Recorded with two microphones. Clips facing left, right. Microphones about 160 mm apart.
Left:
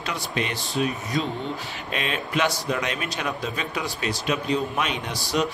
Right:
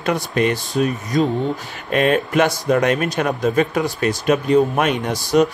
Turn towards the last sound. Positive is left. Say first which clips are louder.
# right 9 dB
turn(degrees=-45)  # may be behind; listen again after turning